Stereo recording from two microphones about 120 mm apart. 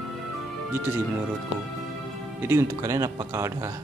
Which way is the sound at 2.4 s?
20° right (ahead or behind).